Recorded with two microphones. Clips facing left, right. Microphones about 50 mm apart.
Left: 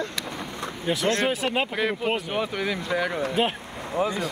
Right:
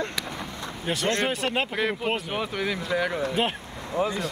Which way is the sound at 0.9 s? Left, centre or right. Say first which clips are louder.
Left 2 dB; centre.